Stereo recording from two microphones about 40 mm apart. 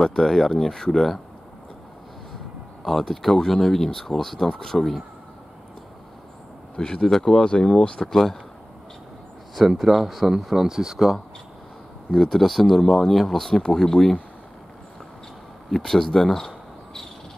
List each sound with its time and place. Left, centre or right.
0.0 s speech: centre
2.8 s speech: centre
6.8 s speech: centre
7.5 s speech: left
8.0 s speech: centre
9.7 s speech: centre
10.5 s speech: centre
12.1 s speech: centre
15.7 s speech: centre